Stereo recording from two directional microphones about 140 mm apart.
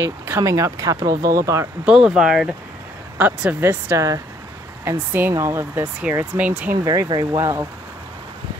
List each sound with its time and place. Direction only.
0.0 s speech: 20° right (ahead or behind)
1.9 s speech: 5° right (ahead or behind)
6.8 s speech: 20° right (ahead or behind)